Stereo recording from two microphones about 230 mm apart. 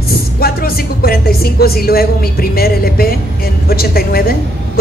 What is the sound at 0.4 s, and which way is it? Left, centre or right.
Speech, left.